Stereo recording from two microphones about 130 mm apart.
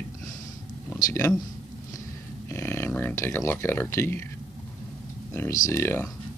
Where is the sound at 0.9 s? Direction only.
25° left (ahead or behind).